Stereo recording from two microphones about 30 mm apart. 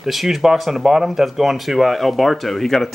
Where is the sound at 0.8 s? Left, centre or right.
Centre.